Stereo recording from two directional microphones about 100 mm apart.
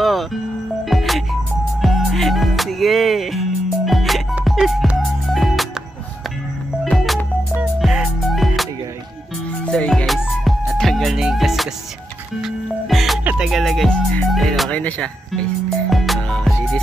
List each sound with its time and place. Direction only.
0.0 s music: centre (ahead or behind)
6.8 s music: centre (ahead or behind)
9.7 s music: 10° left (ahead or behind)
13.2 s music: 15° right (ahead or behind)
13.5 s music: centre (ahead or behind)
14.3 s music: centre (ahead or behind)
14.7 s speech: 15° left (ahead or behind)
15.9 s music: 5° left (ahead or behind)